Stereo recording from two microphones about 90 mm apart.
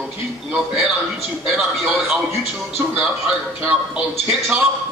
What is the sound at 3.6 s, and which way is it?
Speech, 15° right (ahead or behind).